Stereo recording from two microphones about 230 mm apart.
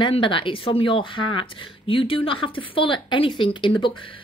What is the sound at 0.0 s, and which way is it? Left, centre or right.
Speech, left.